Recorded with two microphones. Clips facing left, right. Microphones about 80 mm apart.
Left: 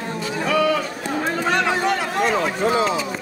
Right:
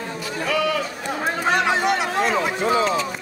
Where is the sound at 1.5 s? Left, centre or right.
Centre.